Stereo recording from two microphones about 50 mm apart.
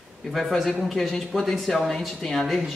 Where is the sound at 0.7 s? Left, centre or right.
Centre.